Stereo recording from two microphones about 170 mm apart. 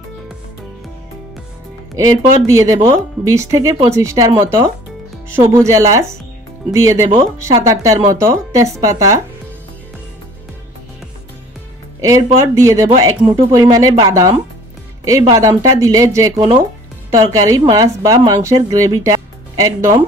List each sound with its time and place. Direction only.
2.0 s speech: 20° right (ahead or behind)
5.4 s speech: 20° right (ahead or behind)
12.0 s speech: 20° right (ahead or behind)
15.3 s speech: 20° right (ahead or behind)
16.3 s speech: 35° right (ahead or behind)
17.1 s speech: 20° right (ahead or behind)